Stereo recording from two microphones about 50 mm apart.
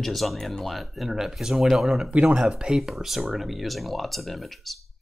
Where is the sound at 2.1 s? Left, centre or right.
Centre.